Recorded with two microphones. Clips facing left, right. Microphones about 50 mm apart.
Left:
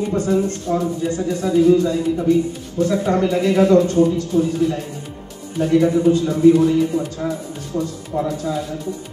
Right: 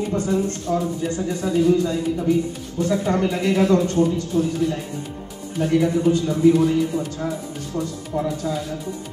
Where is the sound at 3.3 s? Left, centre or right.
Centre.